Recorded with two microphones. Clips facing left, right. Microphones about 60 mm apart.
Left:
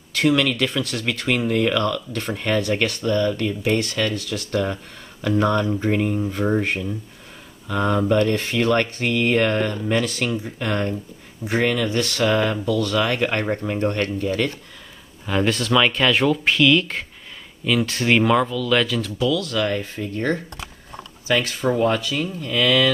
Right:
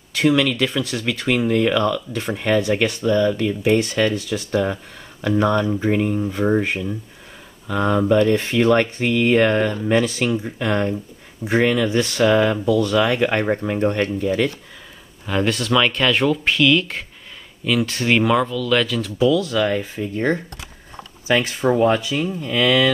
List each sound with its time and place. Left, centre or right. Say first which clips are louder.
0.3 s speech: right 2 dB; centre
4.5 s speech: right 2 dB; centre
15.2 s speech: even; centre
19.1 s speech: right 5 dB; centre